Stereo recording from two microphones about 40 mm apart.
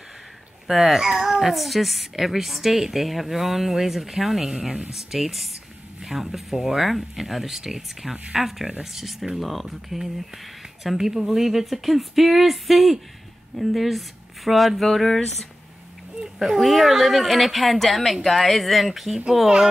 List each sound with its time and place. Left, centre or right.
0.7 s speech: centre
1.5 s a woman's voice: centre
11.0 s a woman's voice: centre
16.3 s a woman's voice: centre